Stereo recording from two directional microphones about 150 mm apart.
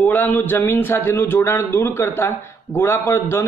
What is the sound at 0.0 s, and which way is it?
A man's voice, 10° left (ahead or behind).